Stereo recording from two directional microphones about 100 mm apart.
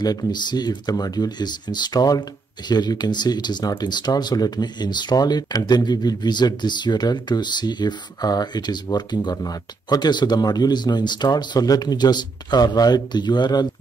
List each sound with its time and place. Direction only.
0.0 s speech: 40° left (ahead or behind)